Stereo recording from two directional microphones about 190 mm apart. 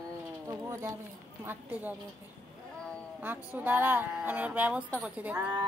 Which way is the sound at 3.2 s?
10° right (ahead or behind).